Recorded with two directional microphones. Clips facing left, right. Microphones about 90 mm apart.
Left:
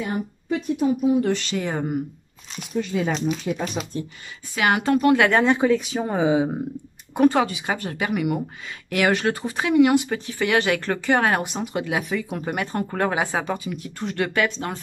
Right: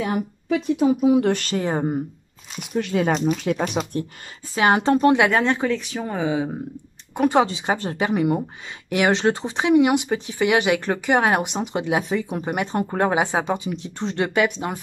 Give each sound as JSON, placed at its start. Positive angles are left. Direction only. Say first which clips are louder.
{"t": 0.0, "sound": "speech", "louder": "right 3 dB", "side_deg": -90}
{"t": 1.3, "sound": "speech", "louder": "right 1 dB", "side_deg": -50}
{"t": 1.6, "sound": "speech", "louder": "right 3 dB", "side_deg": -35}
{"t": 2.8, "sound": "speech", "louder": "right 3 dB", "side_deg": -60}
{"t": 4.6, "sound": "speech", "louder": "right 2 dB", "side_deg": -30}
{"t": 5.4, "sound": "speech", "louder": "left 3 dB", "side_deg": 10}
{"t": 7.2, "sound": "speech", "louder": "right 1 dB", "side_deg": -25}